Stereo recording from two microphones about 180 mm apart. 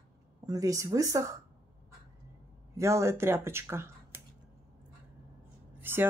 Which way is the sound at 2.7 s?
15° right (ahead or behind).